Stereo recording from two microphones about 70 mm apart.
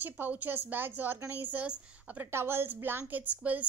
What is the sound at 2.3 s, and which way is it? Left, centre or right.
A woman's voice, right.